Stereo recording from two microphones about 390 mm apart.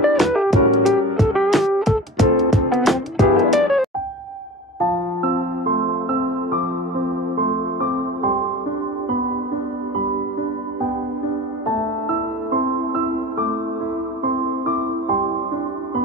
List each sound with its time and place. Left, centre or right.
0.0 s music: centre